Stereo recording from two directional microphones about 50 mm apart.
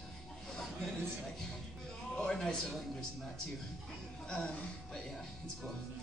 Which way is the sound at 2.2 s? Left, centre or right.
Centre.